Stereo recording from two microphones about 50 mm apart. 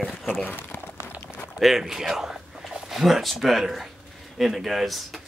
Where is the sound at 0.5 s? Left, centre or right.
Left.